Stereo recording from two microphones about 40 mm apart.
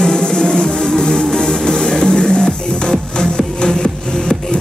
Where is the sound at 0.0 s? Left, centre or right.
Centre.